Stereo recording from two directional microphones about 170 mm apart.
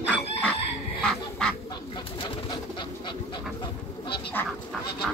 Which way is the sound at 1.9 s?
25° left (ahead or behind).